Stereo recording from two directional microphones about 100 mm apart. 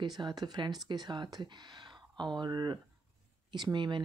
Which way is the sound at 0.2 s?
40° right (ahead or behind).